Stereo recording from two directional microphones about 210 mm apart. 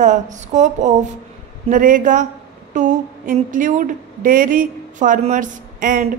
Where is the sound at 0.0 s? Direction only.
35° right (ahead or behind).